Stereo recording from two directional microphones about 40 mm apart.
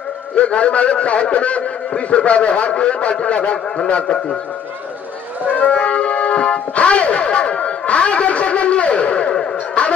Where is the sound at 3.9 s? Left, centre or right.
Left.